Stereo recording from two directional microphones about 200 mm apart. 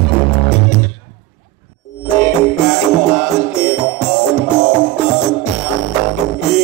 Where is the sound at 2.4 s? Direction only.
Centre (ahead or behind).